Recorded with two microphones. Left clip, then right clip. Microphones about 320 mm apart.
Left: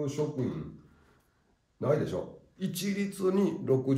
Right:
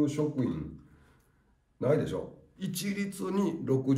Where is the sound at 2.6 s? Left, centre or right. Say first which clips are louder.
Left 1 dB; centre.